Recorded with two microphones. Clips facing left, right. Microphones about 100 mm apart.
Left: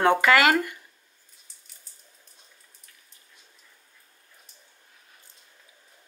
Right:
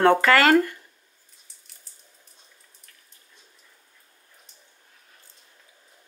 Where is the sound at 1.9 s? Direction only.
Centre (ahead or behind).